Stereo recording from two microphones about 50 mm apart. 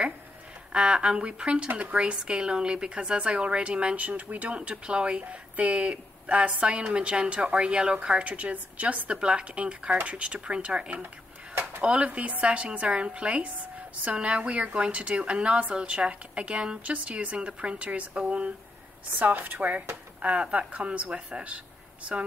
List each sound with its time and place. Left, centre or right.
0.7 s a woman's voice: centre